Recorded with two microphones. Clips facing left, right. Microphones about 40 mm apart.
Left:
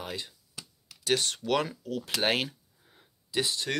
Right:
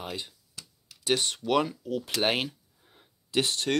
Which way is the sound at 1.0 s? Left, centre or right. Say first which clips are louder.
Right 1 dB; right.